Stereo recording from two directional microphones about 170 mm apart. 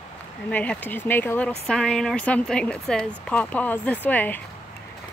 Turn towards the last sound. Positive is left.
turn(degrees=10)  # may be behind; listen again after turning